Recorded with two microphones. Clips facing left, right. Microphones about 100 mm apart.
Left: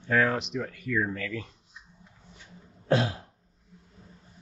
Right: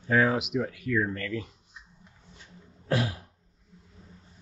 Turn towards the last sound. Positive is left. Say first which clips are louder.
# left 3 dB
turn(degrees=25)  # may be behind; listen again after turning